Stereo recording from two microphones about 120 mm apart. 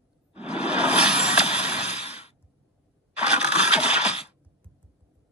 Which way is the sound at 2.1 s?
60° left (ahead or behind).